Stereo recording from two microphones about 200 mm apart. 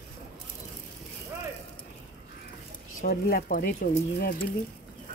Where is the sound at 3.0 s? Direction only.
45° left (ahead or behind).